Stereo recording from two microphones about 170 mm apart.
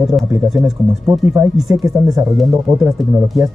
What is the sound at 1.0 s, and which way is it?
Speech, 15° right (ahead or behind).